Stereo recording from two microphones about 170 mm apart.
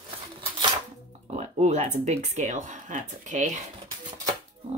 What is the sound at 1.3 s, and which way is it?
Speech, 45° right (ahead or behind).